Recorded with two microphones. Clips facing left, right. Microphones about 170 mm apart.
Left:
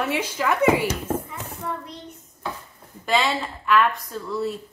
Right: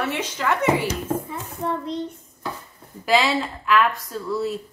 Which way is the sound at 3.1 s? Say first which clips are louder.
Right 3 dB; centre (ahead or behind).